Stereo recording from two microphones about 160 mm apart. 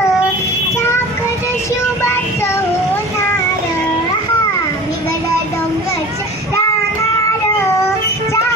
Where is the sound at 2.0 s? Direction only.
15° left (ahead or behind).